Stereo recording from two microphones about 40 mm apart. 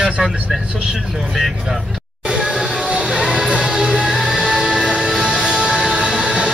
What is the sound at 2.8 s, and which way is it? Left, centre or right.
Music, centre.